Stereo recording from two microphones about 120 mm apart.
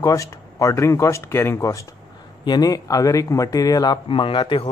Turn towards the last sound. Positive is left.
turn(degrees=45)  # may be behind; listen again after turning